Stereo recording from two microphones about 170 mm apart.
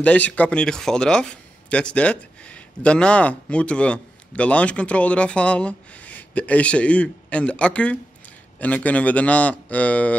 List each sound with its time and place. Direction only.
0.0 s speech: 10° left (ahead or behind)